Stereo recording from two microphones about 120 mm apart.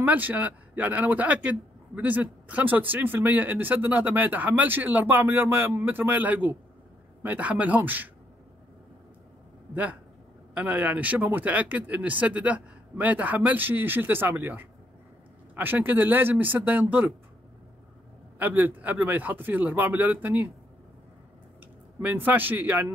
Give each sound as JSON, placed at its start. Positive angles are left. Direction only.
{"t": 0.0, "sound": "speech", "side_deg": -15}
{"t": 10.5, "sound": "speech", "side_deg": -10}
{"t": 18.4, "sound": "speech", "side_deg": -15}
{"t": 22.0, "sound": "speech", "side_deg": -15}